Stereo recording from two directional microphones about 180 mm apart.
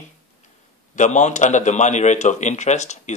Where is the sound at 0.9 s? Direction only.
40° left (ahead or behind).